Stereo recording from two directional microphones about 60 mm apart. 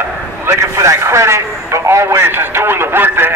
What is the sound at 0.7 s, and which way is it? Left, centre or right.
A man's voice, right.